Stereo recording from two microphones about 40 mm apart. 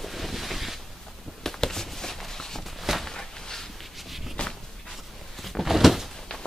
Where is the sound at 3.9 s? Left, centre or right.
Centre.